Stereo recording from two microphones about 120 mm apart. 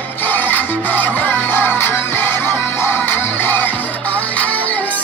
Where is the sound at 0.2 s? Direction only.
15° left (ahead or behind).